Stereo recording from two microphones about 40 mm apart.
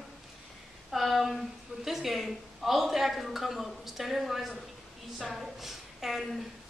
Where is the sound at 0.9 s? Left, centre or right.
Centre.